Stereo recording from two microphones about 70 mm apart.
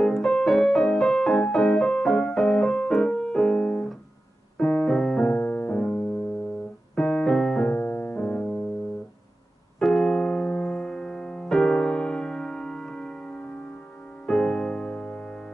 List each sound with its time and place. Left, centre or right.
0.0 s music: centre
4.6 s keyboard: centre
5.2 s music: left
7.0 s keyboard: centre
7.8 s music: left
9.8 s music: centre